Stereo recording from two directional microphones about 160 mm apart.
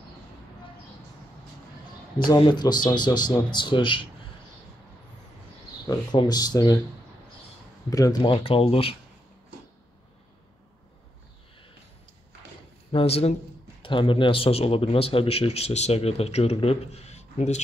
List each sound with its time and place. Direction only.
2.2 s speech: 25° left (ahead or behind)
5.9 s speech: 25° left (ahead or behind)
7.9 s speech: 25° left (ahead or behind)
12.9 s speech: 40° left (ahead or behind)